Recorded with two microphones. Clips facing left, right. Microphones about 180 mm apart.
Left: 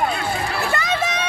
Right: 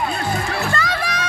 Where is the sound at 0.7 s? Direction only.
20° left (ahead or behind).